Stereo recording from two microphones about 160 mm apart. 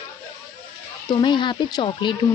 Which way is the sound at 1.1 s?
30° left (ahead or behind).